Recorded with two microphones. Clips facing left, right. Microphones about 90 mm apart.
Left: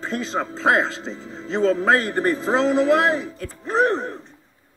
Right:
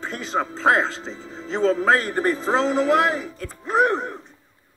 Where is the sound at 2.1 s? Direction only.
15° right (ahead or behind).